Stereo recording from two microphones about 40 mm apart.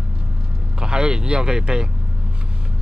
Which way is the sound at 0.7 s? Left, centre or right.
Right.